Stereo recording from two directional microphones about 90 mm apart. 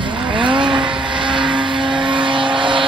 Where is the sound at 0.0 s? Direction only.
65° right (ahead or behind).